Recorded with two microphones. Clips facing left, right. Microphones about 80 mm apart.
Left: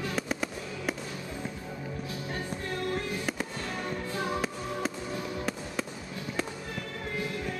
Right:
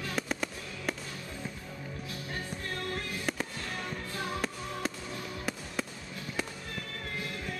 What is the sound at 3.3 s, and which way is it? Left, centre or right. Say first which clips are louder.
Fireworks: left 2 dB; centre.